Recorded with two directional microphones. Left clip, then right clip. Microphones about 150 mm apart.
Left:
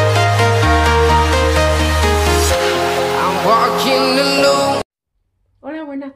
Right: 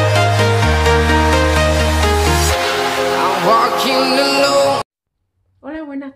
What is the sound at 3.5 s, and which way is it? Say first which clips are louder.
Music: left 1 dB; centre (ahead or behind).